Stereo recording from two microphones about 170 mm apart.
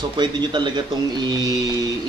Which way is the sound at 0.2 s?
25° right (ahead or behind).